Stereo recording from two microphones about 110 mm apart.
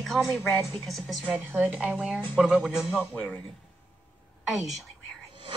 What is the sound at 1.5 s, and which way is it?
Speech, 10° right (ahead or behind).